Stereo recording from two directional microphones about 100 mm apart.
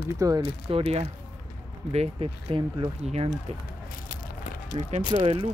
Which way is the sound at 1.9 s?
85° right.